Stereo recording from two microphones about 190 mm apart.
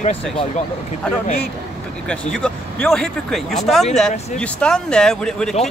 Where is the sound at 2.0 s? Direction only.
5° left (ahead or behind).